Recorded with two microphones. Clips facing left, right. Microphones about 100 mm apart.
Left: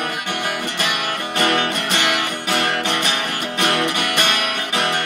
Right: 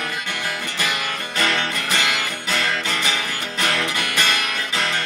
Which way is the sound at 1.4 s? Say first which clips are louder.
Left 4 dB; 60° left (ahead or behind).